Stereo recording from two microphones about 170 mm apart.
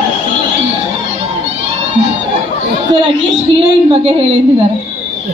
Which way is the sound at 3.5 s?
35° right (ahead or behind).